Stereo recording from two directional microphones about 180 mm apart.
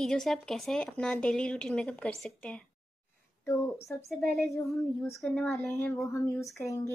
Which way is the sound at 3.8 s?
15° left (ahead or behind).